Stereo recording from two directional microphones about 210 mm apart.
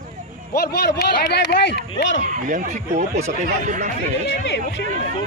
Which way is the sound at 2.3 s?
35° right (ahead or behind).